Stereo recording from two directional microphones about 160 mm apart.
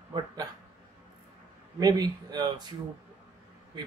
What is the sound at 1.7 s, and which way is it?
Speech, 25° right (ahead or behind).